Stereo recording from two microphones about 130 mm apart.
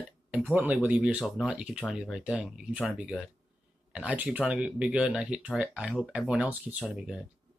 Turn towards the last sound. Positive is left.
turn(degrees=-10)  # may be behind; listen again after turning